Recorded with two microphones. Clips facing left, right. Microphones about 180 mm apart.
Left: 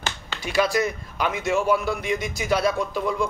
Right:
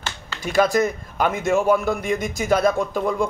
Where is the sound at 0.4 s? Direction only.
45° right (ahead or behind).